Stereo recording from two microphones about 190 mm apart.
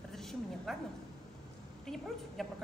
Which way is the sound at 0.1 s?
Centre (ahead or behind).